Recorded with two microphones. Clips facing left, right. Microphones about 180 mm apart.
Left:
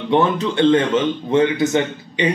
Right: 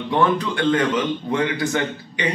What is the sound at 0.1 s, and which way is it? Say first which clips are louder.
A man's voice: left 3 dB; 25° left (ahead or behind).